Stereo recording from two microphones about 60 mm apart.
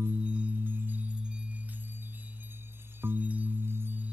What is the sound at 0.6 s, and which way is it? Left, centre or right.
Music, right.